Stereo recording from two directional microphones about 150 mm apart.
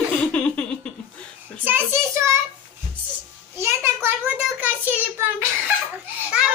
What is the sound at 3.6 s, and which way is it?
A child's voice, 15° right (ahead or behind).